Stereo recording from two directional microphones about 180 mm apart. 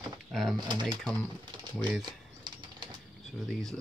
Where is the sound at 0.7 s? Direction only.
25° right (ahead or behind).